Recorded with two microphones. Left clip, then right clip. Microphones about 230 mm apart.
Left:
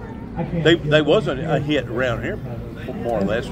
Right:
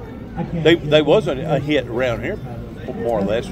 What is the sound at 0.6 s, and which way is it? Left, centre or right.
A man's voice, centre.